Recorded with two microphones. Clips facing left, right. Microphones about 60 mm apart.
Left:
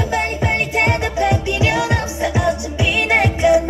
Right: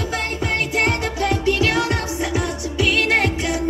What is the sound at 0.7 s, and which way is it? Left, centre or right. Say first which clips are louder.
Music: left 3 dB; left.